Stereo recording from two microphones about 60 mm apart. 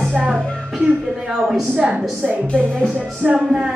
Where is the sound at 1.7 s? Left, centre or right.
Right.